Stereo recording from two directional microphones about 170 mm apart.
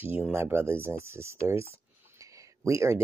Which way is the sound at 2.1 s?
20° right (ahead or behind).